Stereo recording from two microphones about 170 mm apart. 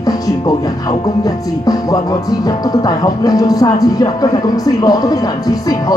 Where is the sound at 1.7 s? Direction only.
20° left (ahead or behind).